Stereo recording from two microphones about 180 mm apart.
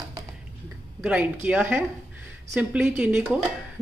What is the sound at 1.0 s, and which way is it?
Speech, 5° right (ahead or behind).